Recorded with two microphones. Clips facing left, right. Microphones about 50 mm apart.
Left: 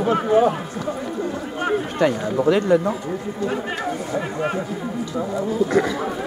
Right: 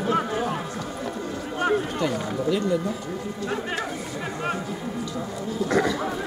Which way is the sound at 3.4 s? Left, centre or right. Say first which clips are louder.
Left 4 dB; centre.